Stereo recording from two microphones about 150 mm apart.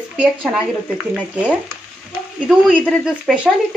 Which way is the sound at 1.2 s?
10° right (ahead or behind).